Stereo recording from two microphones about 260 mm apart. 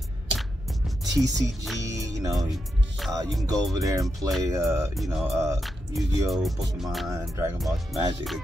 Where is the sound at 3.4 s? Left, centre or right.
Centre.